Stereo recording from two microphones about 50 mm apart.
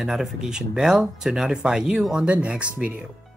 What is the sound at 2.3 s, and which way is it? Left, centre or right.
Speech, right.